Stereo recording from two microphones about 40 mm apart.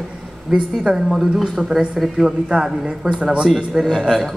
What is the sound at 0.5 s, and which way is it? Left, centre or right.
Speech, centre.